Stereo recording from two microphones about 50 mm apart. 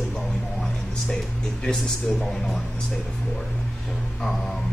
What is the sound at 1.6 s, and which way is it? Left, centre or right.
Speech, centre.